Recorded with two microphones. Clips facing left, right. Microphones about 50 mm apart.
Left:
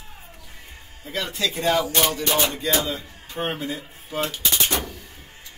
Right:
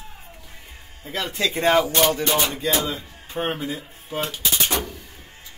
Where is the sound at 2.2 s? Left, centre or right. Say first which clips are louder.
Right 1 dB; centre.